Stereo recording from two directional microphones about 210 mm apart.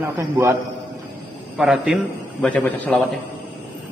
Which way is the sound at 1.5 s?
Centre (ahead or behind).